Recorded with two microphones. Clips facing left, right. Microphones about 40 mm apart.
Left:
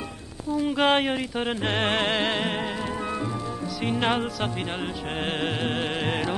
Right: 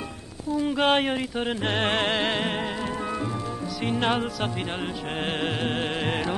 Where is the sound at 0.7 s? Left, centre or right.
Left.